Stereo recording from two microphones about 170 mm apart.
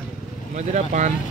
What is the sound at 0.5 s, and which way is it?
Speech, 45° right (ahead or behind).